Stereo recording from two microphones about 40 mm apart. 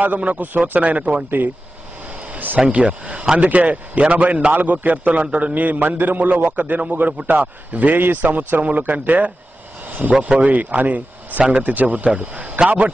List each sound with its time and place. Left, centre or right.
0.2 s a man's voice: right
2.3 s vehicle: right
2.6 s a man's voice: right
9.8 s vehicle: right
10.2 s a man's voice: right